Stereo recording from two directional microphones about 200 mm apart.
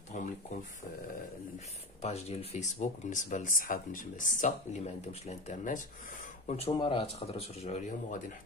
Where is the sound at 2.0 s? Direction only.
30° left (ahead or behind).